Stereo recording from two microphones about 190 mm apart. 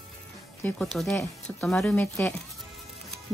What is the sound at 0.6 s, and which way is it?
Speech, centre (ahead or behind).